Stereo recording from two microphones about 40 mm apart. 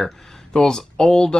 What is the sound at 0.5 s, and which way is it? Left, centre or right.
Speech, centre.